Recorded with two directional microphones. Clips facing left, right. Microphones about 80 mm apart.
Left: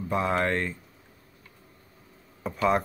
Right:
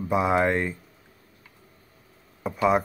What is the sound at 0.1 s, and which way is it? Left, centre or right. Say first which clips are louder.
Speech: right 4 dB; centre.